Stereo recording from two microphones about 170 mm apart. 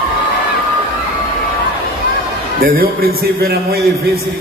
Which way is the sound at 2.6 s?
60° right (ahead or behind).